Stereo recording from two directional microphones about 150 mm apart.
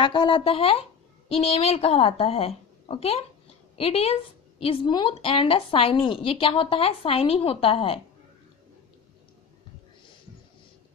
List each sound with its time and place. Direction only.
0.0 s a woman's voice: 35° left (ahead or behind)